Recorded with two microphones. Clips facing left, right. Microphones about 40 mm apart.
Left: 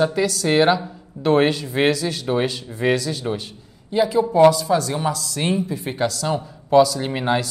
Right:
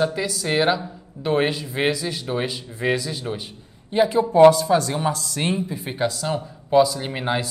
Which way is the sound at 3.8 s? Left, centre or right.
Right.